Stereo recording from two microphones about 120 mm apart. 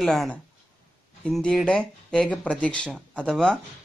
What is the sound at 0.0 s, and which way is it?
Speech, centre (ahead or behind).